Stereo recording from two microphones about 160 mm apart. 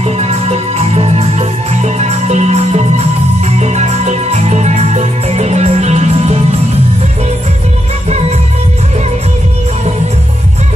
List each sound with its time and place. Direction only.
0.0 s music: 40° right (ahead or behind)